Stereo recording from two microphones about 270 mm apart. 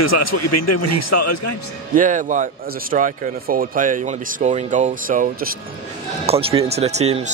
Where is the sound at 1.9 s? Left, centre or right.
Right.